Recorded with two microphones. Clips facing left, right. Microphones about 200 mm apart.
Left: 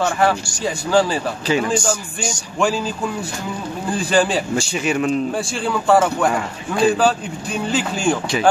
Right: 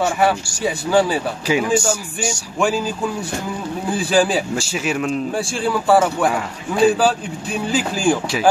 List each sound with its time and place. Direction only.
0.0 s a man's voice: 5° right (ahead or behind)